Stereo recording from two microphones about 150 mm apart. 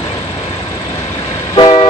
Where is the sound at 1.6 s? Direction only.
35° left (ahead or behind).